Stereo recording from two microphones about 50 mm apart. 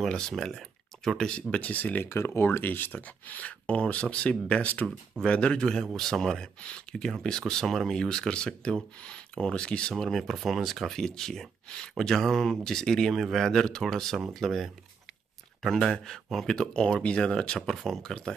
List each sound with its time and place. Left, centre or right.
0.1 s speech: centre
1.5 s speech: left
2.0 s speech: left
5.2 s speech: centre
10.0 s speech: centre